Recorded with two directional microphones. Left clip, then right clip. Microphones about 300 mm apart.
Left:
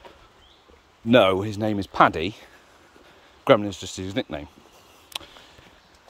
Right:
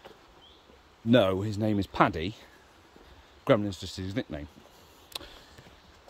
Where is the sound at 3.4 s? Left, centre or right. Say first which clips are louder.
Left 7 dB; centre.